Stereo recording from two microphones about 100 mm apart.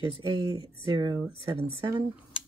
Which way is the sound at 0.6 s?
55° right (ahead or behind).